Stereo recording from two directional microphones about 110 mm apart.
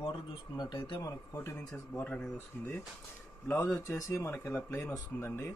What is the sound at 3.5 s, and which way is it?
A man's voice, 25° left (ahead or behind).